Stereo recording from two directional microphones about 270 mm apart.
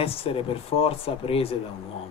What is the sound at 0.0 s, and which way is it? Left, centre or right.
Speech, left.